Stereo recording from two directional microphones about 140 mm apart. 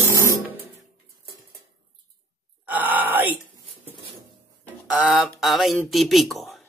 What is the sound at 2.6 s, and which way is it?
Groan, 10° right (ahead or behind).